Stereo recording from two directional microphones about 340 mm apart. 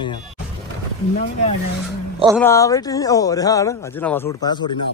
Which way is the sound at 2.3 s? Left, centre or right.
Centre.